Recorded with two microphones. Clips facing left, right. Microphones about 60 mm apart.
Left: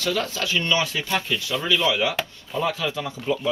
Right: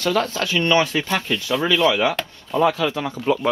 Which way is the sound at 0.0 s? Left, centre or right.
Right.